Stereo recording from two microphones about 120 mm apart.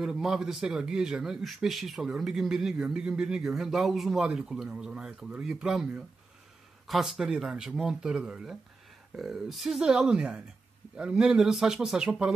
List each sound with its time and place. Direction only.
0.0 s speech: 5° right (ahead or behind)